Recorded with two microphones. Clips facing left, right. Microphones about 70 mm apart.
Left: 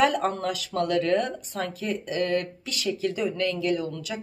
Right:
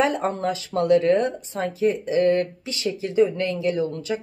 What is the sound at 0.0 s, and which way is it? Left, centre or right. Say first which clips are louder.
Speech: right 1 dB; right.